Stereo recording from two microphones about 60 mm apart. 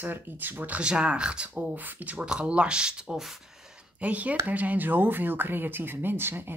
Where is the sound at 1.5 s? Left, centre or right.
Right.